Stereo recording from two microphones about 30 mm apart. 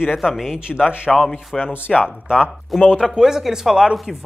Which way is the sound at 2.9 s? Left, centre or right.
Right.